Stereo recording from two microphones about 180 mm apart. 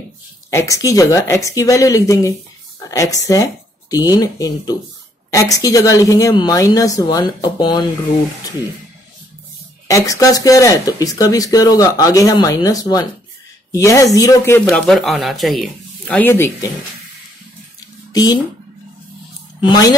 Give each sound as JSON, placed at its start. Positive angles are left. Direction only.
{"t": 0.5, "sound": "speech", "side_deg": 15}
{"t": 9.8, "sound": "a woman's voice", "side_deg": 15}
{"t": 14.7, "sound": "speech", "side_deg": 0}
{"t": 18.1, "sound": "speech", "side_deg": 20}
{"t": 19.6, "sound": "speech", "side_deg": 20}